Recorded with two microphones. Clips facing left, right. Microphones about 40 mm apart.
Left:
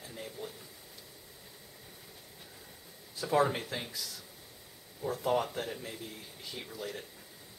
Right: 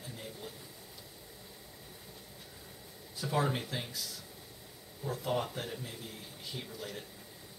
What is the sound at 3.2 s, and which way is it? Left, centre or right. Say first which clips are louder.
Speech: left 5 dB; centre.